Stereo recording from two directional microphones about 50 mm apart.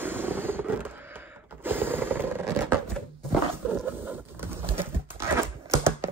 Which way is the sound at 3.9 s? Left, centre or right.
Right.